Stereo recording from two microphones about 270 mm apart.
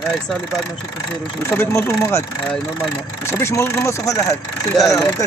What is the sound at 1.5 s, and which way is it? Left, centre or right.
Speech, centre.